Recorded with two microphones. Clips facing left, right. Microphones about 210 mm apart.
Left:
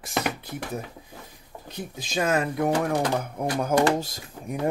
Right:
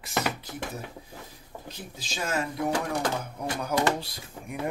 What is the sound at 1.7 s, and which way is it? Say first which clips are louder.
Speech: left 8 dB; 55° left (ahead or behind).